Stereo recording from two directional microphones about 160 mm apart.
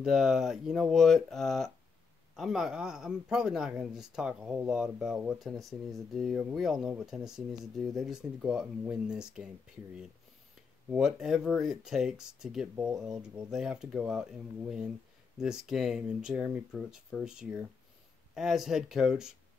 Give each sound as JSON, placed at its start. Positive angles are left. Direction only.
{"t": 0.0, "sound": "speech", "side_deg": -5}
{"t": 10.9, "sound": "speech", "side_deg": -5}